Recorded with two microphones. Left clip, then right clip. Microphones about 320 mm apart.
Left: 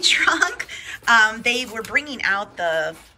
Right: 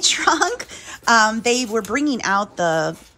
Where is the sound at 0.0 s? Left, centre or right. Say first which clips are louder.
Even; centre.